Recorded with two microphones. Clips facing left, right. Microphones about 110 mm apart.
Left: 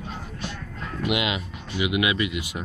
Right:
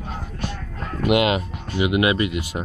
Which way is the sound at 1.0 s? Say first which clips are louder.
Right 8 dB; 50° right (ahead or behind).